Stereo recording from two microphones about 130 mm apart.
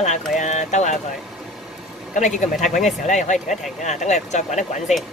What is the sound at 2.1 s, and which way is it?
Speech, 70° left (ahead or behind).